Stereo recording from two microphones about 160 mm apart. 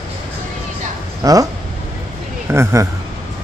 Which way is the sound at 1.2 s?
20° right (ahead or behind).